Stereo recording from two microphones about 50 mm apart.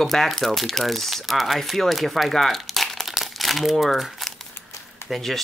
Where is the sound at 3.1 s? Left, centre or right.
Centre.